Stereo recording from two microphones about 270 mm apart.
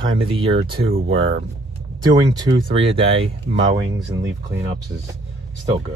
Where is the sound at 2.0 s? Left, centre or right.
Centre.